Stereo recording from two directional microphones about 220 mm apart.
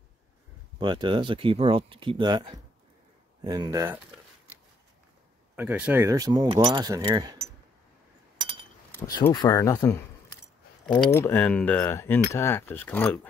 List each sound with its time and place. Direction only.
0.7 s speech: 20° right (ahead or behind)
5.6 s speech: 5° right (ahead or behind)
8.4 s chink: 25° right (ahead or behind)
9.2 s speech: 20° left (ahead or behind)